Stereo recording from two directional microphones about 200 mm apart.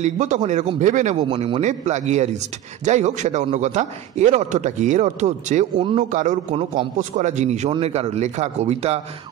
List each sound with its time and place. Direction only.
0.0 s a man's voice: 35° right (ahead or behind)
5.8 s speech: 25° right (ahead or behind)
6.1 s a man's voice: 40° right (ahead or behind)